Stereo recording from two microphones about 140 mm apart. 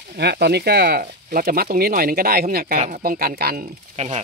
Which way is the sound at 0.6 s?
90° right.